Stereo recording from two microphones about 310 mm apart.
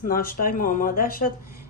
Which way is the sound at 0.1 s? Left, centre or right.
Left.